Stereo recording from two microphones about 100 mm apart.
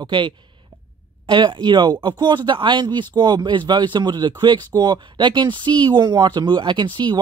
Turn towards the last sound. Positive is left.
turn(degrees=-50)  # may be behind; listen again after turning